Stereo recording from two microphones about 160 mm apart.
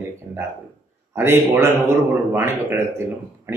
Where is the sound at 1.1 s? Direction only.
15° right (ahead or behind).